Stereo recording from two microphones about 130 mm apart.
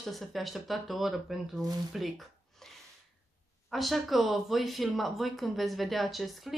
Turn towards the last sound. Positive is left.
turn(degrees=0)  # may be behind; listen again after turning